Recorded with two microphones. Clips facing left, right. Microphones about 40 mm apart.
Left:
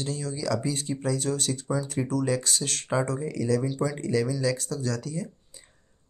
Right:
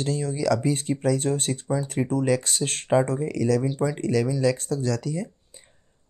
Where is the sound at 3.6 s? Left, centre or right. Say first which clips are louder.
Right 3 dB; right.